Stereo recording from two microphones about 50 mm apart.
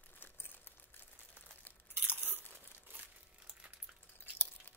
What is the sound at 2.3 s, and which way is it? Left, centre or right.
Crumpling, right.